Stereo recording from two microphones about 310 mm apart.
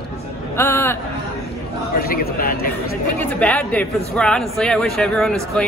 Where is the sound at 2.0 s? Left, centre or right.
Left.